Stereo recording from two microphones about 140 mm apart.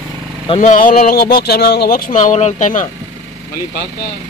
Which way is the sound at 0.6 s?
70° left (ahead or behind).